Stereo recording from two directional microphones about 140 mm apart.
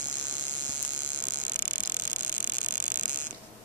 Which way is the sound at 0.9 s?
60° right (ahead or behind).